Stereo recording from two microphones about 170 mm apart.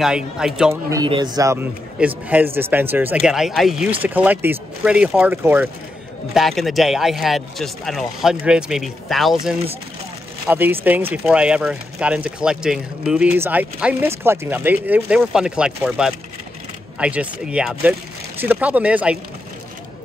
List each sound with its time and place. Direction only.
0.0 s speech: 5° right (ahead or behind)
0.8 s a man's voice: 25° right (ahead or behind)
6.3 s speech: centre (ahead or behind)